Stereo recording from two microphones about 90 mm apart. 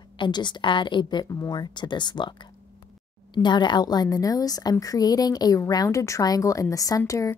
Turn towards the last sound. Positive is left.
turn(degrees=40)  # may be behind; listen again after turning